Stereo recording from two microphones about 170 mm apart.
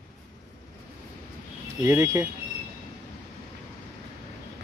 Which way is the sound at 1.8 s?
15° right (ahead or behind).